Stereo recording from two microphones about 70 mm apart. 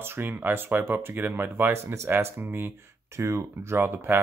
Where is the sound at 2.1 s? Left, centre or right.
Right.